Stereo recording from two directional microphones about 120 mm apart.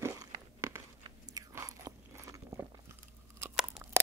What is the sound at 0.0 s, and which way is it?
Biting, 25° right (ahead or behind).